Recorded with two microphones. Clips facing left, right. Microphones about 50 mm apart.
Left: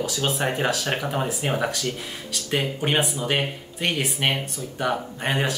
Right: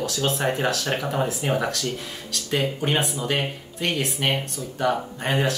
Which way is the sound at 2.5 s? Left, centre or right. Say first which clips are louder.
Even; centre.